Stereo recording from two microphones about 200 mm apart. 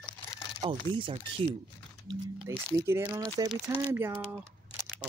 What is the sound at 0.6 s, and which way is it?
Speech, 25° right (ahead or behind).